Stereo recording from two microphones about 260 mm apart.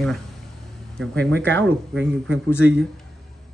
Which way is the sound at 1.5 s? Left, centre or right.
Right.